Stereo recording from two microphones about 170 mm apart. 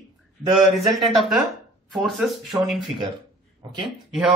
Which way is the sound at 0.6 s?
Centre (ahead or behind).